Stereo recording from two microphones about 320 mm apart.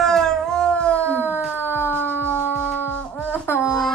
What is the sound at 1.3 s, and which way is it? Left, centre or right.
Siren, centre.